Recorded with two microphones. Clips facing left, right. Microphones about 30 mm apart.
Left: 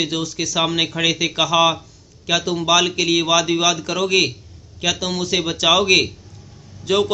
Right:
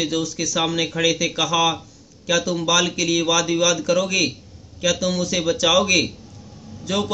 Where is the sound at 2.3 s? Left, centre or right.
Left.